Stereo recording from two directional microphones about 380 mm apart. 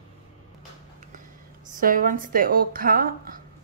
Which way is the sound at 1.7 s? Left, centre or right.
Right.